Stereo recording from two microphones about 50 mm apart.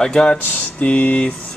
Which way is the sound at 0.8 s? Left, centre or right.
Left.